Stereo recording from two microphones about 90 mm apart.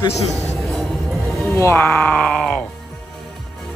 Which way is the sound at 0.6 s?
Centre (ahead or behind).